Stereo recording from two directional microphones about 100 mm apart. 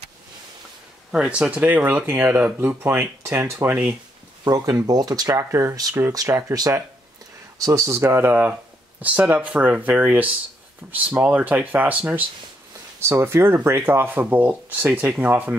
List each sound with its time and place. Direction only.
1.1 s speech: 10° right (ahead or behind); by 5.3 s 40° right (ahead or behind)
5.3 s speech: 30° right (ahead or behind)